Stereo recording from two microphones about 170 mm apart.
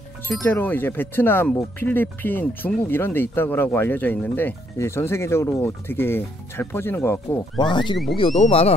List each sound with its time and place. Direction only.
0.4 s speech: 10° left (ahead or behind)
7.6 s speech: 30° left (ahead or behind)